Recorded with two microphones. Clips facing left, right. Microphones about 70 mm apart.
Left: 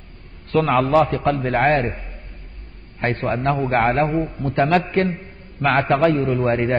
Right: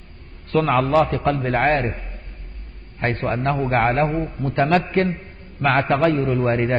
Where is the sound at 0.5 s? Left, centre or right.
Centre.